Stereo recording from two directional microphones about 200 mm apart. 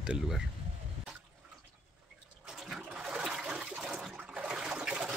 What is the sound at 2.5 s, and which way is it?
Toilet flush, centre (ahead or behind).